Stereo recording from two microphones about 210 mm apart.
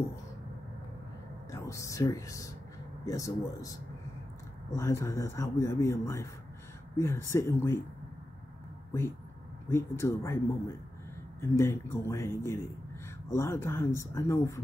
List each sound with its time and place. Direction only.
1.5 s speech: 15° left (ahead or behind)
4.7 s speech: 15° left (ahead or behind)
9.7 s speech: 10° left (ahead or behind)
11.4 s speech: 10° left (ahead or behind)